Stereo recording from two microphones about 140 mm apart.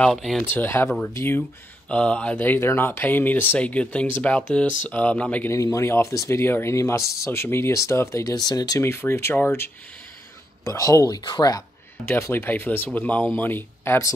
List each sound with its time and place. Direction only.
0.0 s speech: centre (ahead or behind)
0.5 s speech: 15° left (ahead or behind)
5.5 s speech: 20° left (ahead or behind)
12.1 s speech: 15° left (ahead or behind)